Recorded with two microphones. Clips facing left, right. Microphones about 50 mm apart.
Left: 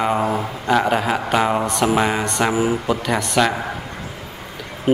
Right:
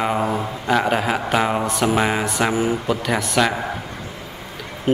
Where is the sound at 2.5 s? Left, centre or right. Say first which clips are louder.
Left 3 dB; centre.